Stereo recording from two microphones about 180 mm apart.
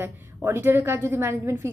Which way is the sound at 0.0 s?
15° right (ahead or behind).